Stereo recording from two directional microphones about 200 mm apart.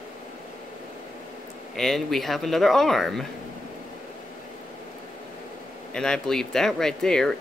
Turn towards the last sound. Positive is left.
turn(degrees=5)  # may be behind; listen again after turning